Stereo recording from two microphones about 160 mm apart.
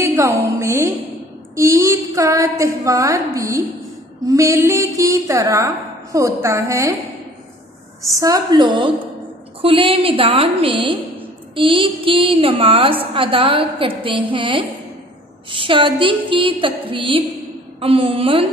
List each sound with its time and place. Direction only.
0.0 s a woman's voice: 15° right (ahead or behind)
8.1 s a woman's voice: 20° right (ahead or behind)